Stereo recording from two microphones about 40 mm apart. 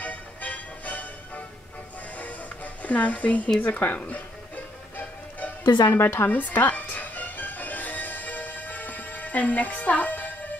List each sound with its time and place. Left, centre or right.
0.0 s music: left
3.6 s speech: left
4.9 s music: left
5.9 s a woman's voice: left
6.2 s music: left